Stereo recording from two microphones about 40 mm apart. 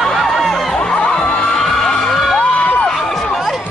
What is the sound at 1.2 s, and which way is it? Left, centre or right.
Children shouting, left.